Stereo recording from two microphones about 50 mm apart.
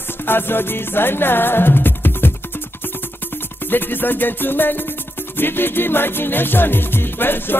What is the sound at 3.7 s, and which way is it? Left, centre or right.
Music, left.